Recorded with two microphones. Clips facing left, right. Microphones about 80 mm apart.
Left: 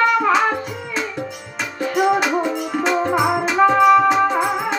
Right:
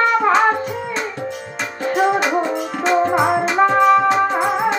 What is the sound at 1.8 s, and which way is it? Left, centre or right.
Music, right.